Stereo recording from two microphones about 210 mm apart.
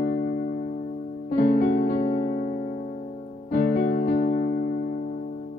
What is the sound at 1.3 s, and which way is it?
Music, 40° left (ahead or behind).